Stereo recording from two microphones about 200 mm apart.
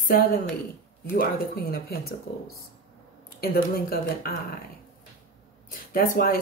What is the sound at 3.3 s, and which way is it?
Speech, 50° left (ahead or behind).